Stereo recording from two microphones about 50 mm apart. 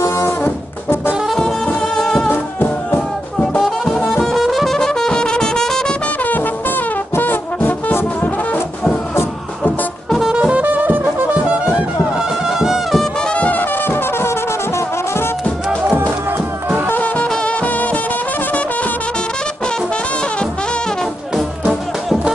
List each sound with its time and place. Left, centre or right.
0.4 s brass instrument: left
1.8 s music: centre
4.3 s music: centre
7.2 s brass instrument: left
9.6 s music: centre
10.3 s music: right
12.4 s music: centre
13.3 s brass instrument: left
16.9 s music: left